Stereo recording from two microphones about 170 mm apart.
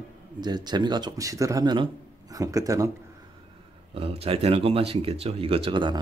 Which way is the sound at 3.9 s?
35° right (ahead or behind).